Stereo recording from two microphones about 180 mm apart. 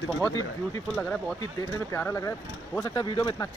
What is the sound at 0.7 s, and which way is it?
Speech, 5° left (ahead or behind).